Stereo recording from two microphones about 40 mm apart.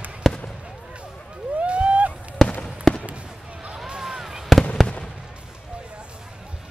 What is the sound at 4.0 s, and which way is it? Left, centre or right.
Fireworks, centre.